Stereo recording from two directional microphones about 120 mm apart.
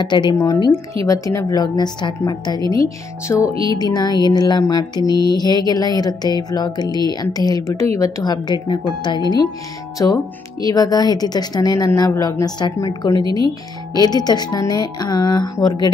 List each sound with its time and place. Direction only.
0.0 s music: 40° left (ahead or behind)
2.7 s speech: 30° left (ahead or behind)
3.6 s music: 35° left (ahead or behind)
9.9 s speech: 30° left (ahead or behind)
10.7 s music: 30° left (ahead or behind)